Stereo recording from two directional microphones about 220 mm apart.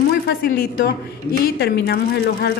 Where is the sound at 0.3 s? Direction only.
45° left (ahead or behind).